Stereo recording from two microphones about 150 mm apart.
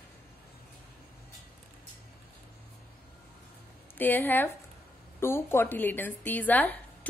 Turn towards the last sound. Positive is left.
turn(degrees=10)  # may be behind; listen again after turning